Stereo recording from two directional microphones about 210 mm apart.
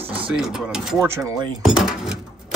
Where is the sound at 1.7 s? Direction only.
Centre (ahead or behind).